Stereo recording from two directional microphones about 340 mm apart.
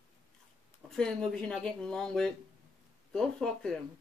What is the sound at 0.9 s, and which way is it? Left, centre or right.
Speech, centre.